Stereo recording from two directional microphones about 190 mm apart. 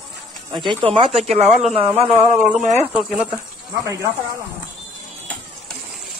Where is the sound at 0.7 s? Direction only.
30° right (ahead or behind).